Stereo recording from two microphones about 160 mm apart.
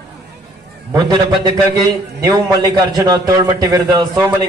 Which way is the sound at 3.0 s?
25° right (ahead or behind).